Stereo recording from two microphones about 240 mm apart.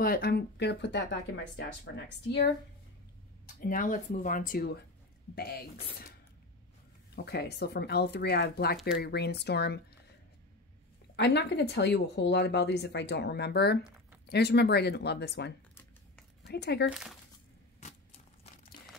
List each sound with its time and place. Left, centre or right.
0.0 s speech: left
3.4 s speech: left
7.2 s speech: left
11.1 s speech: left
15.7 s a sound: centre
16.4 s speech: left